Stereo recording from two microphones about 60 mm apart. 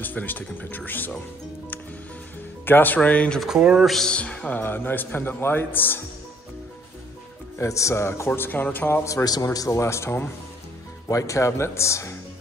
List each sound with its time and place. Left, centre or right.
0.0 s speech: left
2.6 s speech: left
3.4 s speech: centre
3.8 s speech: centre
4.1 s speech: centre; by 5.9 s left
7.6 s speech: left
8.4 s speech: left
9.0 s a man's voice: left
9.7 s speech: left
11.1 s speech: left